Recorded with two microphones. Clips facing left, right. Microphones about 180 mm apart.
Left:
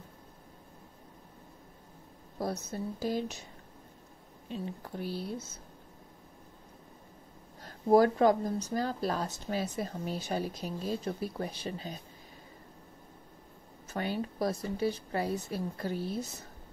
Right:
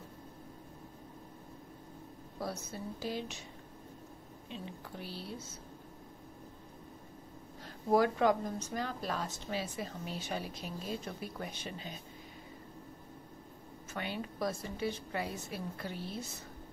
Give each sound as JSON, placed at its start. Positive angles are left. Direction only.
{"t": 2.4, "sound": "a woman's voice", "side_deg": 45}
{"t": 4.5, "sound": "a woman's voice", "side_deg": 45}
{"t": 7.6, "sound": "speech", "side_deg": 40}
{"t": 13.9, "sound": "speech", "side_deg": 40}